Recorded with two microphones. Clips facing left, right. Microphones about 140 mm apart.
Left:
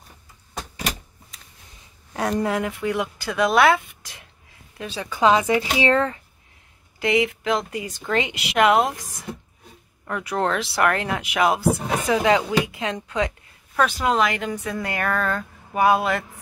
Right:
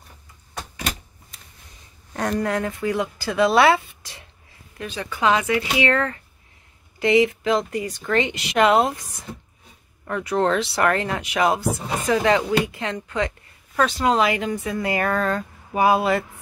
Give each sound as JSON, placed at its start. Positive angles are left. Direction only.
{"t": 2.3, "sound": "speech", "side_deg": 10}
{"t": 4.7, "sound": "speech", "side_deg": 15}
{"t": 7.0, "sound": "speech", "side_deg": 0}
{"t": 10.0, "sound": "speech", "side_deg": 5}
{"t": 13.7, "sound": "speech", "side_deg": 5}